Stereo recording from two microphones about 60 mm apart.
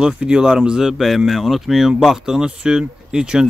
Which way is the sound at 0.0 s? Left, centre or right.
Centre.